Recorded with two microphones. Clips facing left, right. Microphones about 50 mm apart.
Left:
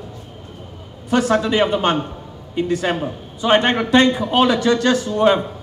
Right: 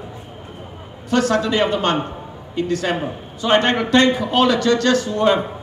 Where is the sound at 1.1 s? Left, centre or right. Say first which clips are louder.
Left 1 dB; centre.